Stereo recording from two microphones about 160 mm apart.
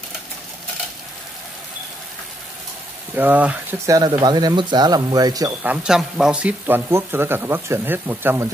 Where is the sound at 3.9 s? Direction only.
25° right (ahead or behind).